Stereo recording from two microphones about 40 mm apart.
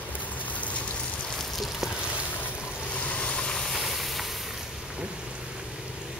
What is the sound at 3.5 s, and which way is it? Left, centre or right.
Vehicle, centre.